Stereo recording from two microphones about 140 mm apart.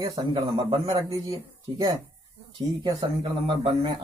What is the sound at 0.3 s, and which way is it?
Speech, 45° right (ahead or behind).